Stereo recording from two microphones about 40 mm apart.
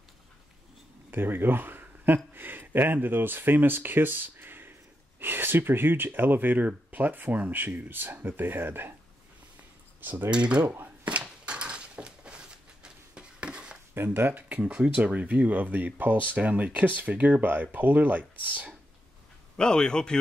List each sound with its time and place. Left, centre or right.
1.1 s speech: right
9.9 s speech: right
10.3 s speech: right
11.1 s a sound: right
13.9 s speech: right
14.3 s speech: right
14.7 s speech: right
19.5 s a man's voice: centre